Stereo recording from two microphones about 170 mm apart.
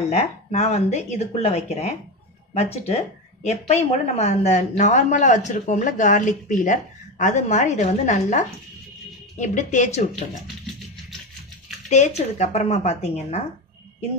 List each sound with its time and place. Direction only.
0.1 s speech: 40° left (ahead or behind)
11.9 s speech: 40° left (ahead or behind)